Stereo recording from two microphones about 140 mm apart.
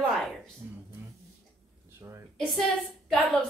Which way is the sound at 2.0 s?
20° right (ahead or behind).